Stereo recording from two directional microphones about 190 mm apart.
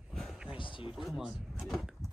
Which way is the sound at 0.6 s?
25° left (ahead or behind).